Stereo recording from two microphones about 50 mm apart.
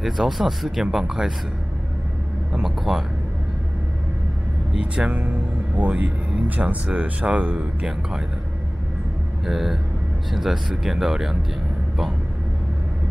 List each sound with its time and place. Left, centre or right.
0.0 s speech: centre
2.6 s speech: centre
4.7 s speech: centre
9.5 s speech: centre